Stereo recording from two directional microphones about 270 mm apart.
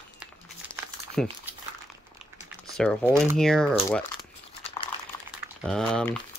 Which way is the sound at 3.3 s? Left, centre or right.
Centre.